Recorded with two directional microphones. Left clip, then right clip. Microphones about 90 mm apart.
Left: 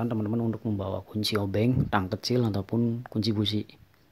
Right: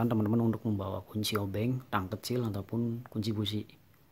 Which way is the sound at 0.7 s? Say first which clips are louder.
Left 5 dB; 30° left (ahead or behind).